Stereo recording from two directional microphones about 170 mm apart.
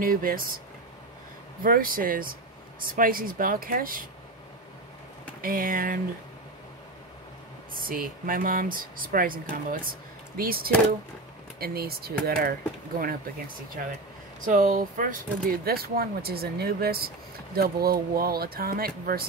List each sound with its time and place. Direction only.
0.0 s speech: 55° right (ahead or behind)
1.6 s speech: 55° right (ahead or behind)
5.4 s speech: 55° right (ahead or behind)
7.7 s speech: 60° right (ahead or behind)
14.4 s speech: 50° right (ahead or behind)